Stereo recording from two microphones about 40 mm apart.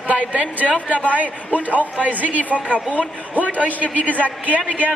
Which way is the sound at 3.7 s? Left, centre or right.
Left.